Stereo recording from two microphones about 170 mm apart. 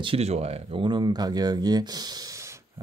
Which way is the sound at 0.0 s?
35° right (ahead or behind).